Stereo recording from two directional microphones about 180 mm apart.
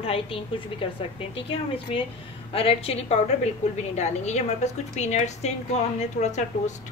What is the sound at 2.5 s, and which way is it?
A woman's voice, 30° left (ahead or behind).